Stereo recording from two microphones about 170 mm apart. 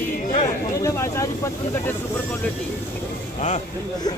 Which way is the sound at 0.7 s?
15° left (ahead or behind).